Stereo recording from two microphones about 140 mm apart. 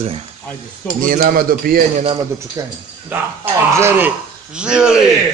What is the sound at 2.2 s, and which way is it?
Speech, 25° right (ahead or behind).